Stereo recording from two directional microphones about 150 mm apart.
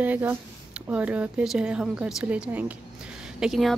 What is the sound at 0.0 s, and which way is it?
A woman's voice, 10° right (ahead or behind).